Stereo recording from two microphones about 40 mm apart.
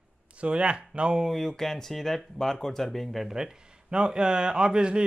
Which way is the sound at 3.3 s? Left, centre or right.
Centre.